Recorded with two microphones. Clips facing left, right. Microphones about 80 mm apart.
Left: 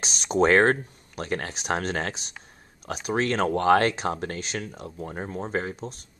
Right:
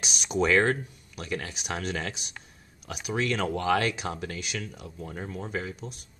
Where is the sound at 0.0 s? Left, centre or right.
Left.